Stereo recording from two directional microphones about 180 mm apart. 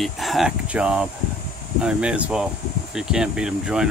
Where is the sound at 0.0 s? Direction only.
Centre (ahead or behind).